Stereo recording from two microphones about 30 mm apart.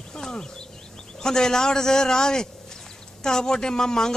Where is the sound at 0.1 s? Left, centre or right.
Centre.